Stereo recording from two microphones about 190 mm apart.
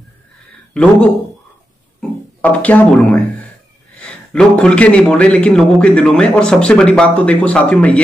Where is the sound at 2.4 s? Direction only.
10° left (ahead or behind).